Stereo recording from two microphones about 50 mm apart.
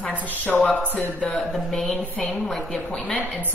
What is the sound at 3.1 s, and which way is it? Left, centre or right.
Speech, left.